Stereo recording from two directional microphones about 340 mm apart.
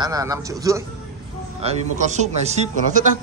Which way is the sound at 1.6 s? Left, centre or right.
Right.